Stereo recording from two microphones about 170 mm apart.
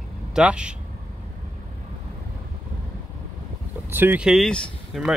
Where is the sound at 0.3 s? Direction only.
5° right (ahead or behind).